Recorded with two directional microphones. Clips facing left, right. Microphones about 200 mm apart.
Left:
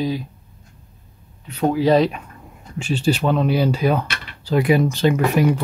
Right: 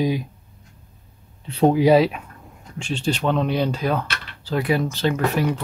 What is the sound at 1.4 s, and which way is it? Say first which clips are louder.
Speech: right 3 dB; 30° right (ahead or behind).